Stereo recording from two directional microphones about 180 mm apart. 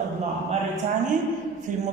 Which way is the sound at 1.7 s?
45° right (ahead or behind).